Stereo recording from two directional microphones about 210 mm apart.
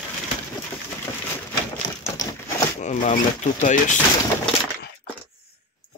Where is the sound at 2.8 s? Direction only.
35° left (ahead or behind).